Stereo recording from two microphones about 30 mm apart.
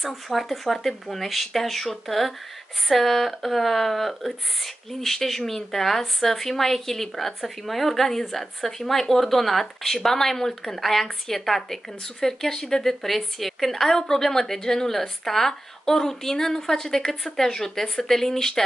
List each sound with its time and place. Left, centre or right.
0.0 s a woman's voice: centre
12.8 s a woman's voice: centre